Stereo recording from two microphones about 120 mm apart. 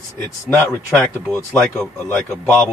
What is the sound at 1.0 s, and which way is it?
Speech, 15° left (ahead or behind).